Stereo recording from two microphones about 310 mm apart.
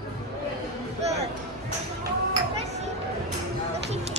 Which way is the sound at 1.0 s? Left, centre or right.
Right.